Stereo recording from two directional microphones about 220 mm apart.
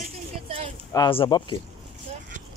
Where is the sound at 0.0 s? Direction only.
30° right (ahead or behind).